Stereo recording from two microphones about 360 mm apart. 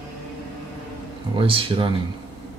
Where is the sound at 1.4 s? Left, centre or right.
Centre.